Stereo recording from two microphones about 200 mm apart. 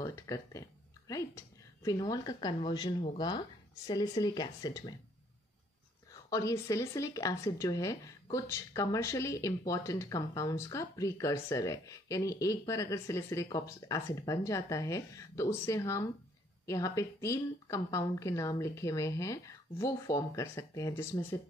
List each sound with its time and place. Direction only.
0.0 s speech: 15° left (ahead or behind)
6.3 s speech: 15° left (ahead or behind)